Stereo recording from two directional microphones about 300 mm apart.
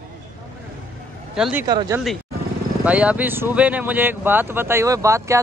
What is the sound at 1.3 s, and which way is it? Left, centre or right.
Speech, centre.